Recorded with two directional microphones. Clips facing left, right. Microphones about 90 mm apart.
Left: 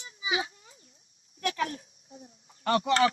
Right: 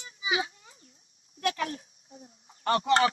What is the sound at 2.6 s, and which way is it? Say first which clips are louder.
Speech: even; 30° right (ahead or behind).